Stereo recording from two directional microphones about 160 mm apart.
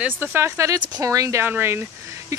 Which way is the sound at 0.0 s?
15° right (ahead or behind).